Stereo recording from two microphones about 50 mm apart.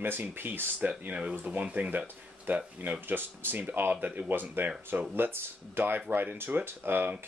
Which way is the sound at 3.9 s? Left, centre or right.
Right.